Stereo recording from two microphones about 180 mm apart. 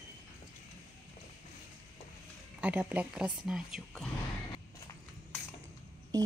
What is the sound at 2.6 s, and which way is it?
Speech, 10° right (ahead or behind).